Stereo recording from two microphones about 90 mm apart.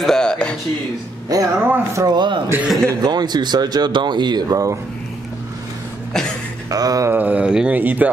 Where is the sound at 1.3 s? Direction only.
45° right (ahead or behind).